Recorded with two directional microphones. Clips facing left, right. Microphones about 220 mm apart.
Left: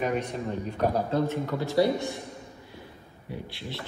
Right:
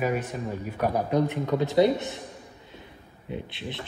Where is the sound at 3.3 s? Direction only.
20° right (ahead or behind).